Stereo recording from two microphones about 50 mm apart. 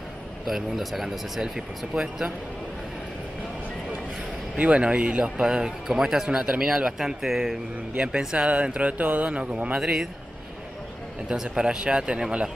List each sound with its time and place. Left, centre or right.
0.5 s speech: centre
4.6 s speech: right; by 7.5 s centre
7.9 s speech: right
8.6 s a sound: right
9.2 s speech: right
11.2 s speech: centre